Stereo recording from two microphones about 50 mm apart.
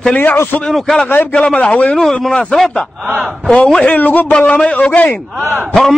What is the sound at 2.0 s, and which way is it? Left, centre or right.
Speech, centre.